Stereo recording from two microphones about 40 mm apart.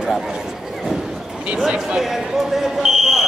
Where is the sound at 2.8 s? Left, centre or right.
Centre.